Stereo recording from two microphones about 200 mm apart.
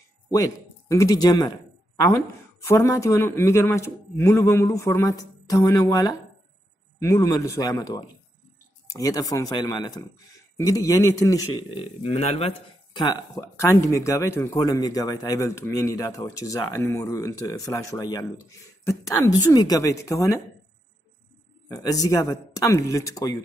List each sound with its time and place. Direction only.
0.3 s speech: 15° left (ahead or behind)
2.6 s a man's voice: 15° left (ahead or behind)
21.6 s a man's voice: 15° left (ahead or behind)